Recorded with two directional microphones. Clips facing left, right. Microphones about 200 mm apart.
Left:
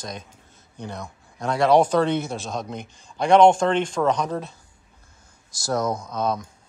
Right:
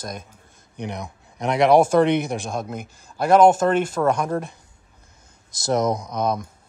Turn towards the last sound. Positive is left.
turn(degrees=-15)  # may be behind; listen again after turning